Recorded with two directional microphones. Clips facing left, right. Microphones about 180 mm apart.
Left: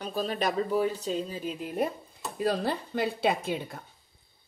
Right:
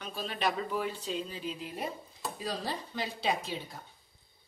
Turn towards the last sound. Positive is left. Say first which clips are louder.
# left 6 dB
turn(degrees=55)  # may be behind; listen again after turning